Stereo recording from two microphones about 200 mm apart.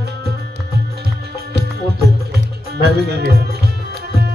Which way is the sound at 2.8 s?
55° right (ahead or behind).